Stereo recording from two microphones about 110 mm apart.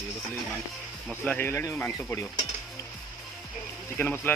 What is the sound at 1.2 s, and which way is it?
Speech, 15° left (ahead or behind).